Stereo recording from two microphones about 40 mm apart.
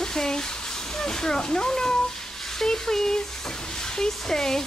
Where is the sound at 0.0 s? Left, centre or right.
Centre.